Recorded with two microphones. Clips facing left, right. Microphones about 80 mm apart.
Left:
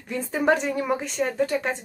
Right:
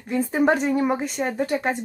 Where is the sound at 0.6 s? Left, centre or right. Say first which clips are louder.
Right 4 dB; centre.